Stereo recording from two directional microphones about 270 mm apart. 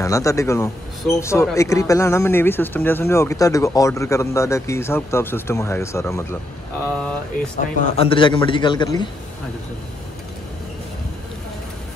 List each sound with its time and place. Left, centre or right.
0.0 s speech: centre
7.5 s speech: left